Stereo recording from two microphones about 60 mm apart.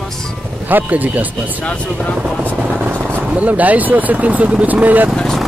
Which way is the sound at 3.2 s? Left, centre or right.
Right.